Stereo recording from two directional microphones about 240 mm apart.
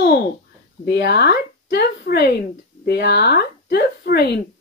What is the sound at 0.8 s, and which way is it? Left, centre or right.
Speech, left.